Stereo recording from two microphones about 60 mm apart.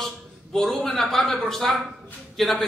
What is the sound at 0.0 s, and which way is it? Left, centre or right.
A man's voice, centre.